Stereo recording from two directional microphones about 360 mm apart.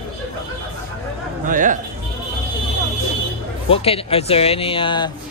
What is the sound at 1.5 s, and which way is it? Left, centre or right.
Speech, right.